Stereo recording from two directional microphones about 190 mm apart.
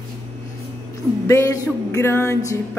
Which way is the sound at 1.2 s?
15° left (ahead or behind).